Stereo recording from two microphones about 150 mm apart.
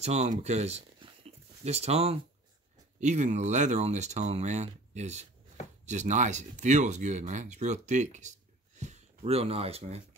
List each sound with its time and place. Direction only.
0.0 s speech: 45° right (ahead or behind)